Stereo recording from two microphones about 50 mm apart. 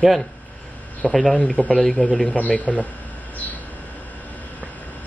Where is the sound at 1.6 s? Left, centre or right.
Left.